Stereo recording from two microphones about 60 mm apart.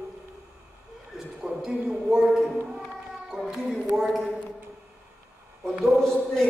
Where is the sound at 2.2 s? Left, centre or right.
Centre.